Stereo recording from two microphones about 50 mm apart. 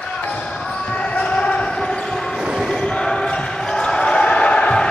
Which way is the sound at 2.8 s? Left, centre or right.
Centre.